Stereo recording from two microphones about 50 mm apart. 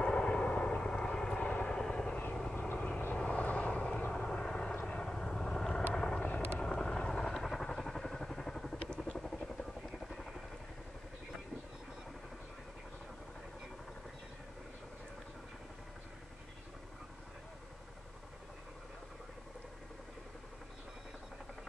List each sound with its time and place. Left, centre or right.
0.0 s vehicle: left
6.2 s helicopter: left
6.6 s vehicle: centre
9.9 s vehicle: centre